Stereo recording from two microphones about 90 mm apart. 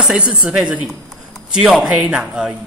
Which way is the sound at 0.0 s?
10° right (ahead or behind).